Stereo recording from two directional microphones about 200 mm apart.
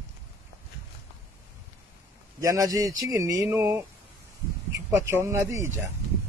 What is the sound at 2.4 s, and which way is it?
Speech, 15° right (ahead or behind).